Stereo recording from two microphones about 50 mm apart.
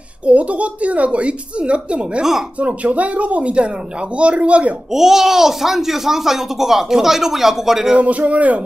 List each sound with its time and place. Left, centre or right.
0.3 s speech: right
4.9 s a child's voice: centre
7.9 s speech: right